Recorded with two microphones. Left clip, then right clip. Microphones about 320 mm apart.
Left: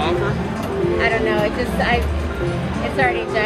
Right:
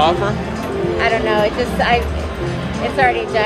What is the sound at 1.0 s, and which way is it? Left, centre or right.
Speech, right.